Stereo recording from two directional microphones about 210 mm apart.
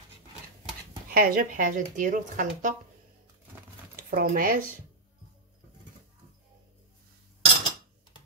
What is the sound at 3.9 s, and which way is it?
Speech, 45° right (ahead or behind).